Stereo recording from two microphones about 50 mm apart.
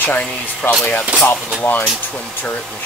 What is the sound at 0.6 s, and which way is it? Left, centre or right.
Speech, left.